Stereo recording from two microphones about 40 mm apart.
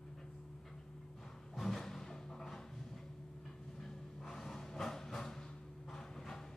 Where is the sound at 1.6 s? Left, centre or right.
Centre.